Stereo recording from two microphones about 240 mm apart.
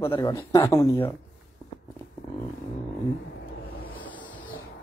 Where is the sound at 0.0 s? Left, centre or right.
Centre.